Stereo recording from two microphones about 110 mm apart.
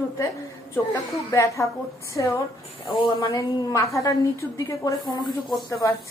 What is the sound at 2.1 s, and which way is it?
A woman's voice, 30° left (ahead or behind).